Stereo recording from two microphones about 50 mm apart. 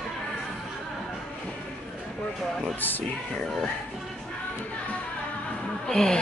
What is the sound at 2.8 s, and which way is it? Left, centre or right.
Music, left.